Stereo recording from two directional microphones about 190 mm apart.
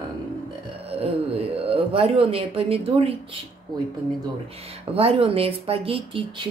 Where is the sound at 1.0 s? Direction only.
30° right (ahead or behind).